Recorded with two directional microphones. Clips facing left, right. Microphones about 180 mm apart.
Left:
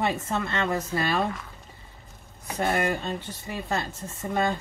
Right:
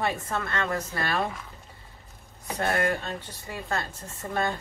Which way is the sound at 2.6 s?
15° left (ahead or behind).